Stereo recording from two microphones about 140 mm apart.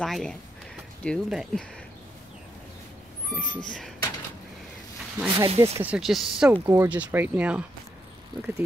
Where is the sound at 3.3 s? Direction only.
10° left (ahead or behind).